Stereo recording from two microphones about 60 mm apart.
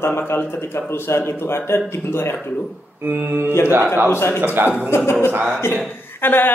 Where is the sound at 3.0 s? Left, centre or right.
Right.